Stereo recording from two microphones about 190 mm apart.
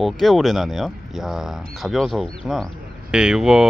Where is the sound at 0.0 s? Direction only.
Centre (ahead or behind).